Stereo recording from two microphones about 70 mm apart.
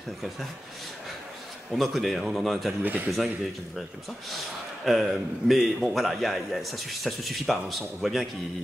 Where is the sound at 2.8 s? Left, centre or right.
Right.